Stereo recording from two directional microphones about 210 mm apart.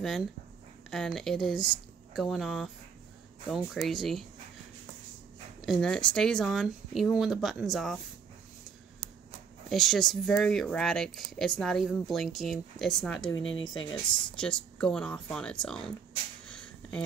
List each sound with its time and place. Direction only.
0.0 s speech: centre (ahead or behind)
5.6 s speech: centre (ahead or behind)
9.7 s speech: centre (ahead or behind)
13.4 s speech: 70° left (ahead or behind)
14.4 s speech: 5° left (ahead or behind)
16.4 s a sound: 5° left (ahead or behind)